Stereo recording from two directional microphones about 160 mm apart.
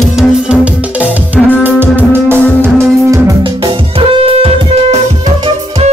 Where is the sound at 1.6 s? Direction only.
10° right (ahead or behind).